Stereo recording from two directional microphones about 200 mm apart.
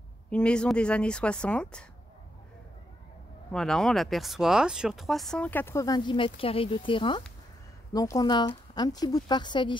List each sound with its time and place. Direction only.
0.3 s speech: 5° left (ahead or behind)
3.5 s a woman's voice: centre (ahead or behind); by 9.8 s 20° left (ahead or behind)